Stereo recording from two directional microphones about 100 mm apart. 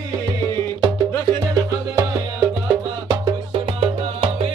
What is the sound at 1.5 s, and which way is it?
Music, 30° right (ahead or behind).